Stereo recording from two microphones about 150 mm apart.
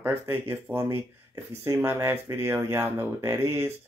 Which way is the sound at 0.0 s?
15° right (ahead or behind).